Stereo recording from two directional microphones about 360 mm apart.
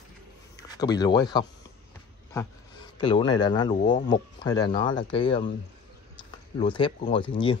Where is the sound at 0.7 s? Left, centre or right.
Centre.